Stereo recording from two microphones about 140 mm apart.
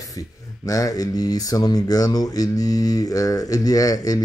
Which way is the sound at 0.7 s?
25° left (ahead or behind).